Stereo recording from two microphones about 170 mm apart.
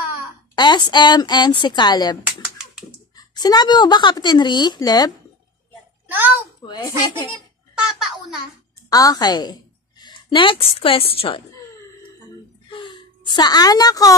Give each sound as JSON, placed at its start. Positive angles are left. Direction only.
{"t": 0.6, "sound": "speech", "side_deg": 25}
{"t": 3.2, "sound": "speech", "side_deg": 25}
{"t": 6.0, "sound": "a sound", "side_deg": -10}
{"t": 6.6, "sound": "speech", "side_deg": 25}
{"t": 7.7, "sound": "a sound", "side_deg": -5}
{"t": 8.9, "sound": "a woman's voice", "side_deg": 20}
{"t": 12.6, "sound": "gasp", "side_deg": 30}
{"t": 13.3, "sound": "speech", "side_deg": 25}